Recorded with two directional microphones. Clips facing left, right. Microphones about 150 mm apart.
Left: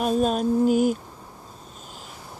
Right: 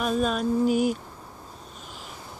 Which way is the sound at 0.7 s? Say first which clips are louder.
Left 3 dB; 45° left (ahead or behind).